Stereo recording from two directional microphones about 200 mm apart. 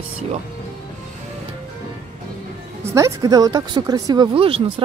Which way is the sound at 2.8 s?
15° right (ahead or behind).